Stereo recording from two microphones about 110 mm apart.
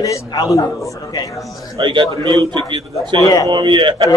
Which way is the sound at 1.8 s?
45° right (ahead or behind).